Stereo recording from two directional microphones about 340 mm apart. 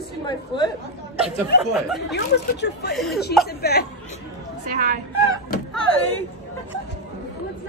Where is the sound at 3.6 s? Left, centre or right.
Left.